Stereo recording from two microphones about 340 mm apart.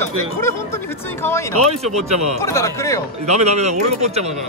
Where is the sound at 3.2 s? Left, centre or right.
Centre.